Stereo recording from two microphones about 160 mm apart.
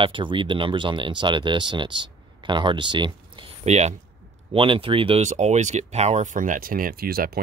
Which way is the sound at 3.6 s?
45° right (ahead or behind).